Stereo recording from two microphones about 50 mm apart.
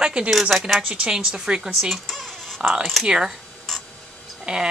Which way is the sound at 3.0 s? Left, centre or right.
Centre.